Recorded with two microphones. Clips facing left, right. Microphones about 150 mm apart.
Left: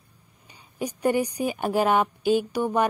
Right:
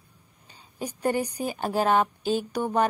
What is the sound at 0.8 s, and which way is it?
Speech, 10° left (ahead or behind).